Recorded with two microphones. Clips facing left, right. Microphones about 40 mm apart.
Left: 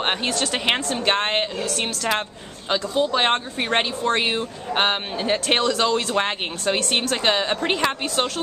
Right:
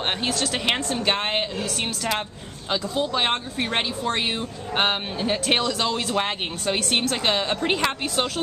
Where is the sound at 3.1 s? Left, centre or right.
Centre.